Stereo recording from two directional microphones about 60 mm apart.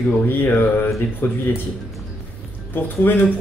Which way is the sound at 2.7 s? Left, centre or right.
Left.